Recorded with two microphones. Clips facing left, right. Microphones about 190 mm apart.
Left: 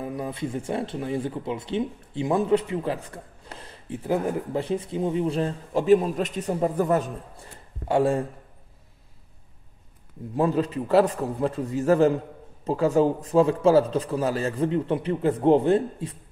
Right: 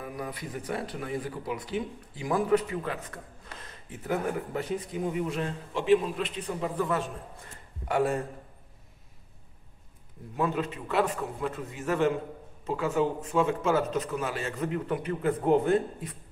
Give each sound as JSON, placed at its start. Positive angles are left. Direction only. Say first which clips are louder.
{"t": 0.0, "sound": "speech", "louder": "left 7 dB", "side_deg": 25}
{"t": 7.9, "sound": "speech", "louder": "left 5 dB", "side_deg": 30}
{"t": 10.3, "sound": "a man's voice", "louder": "left 6 dB", "side_deg": 35}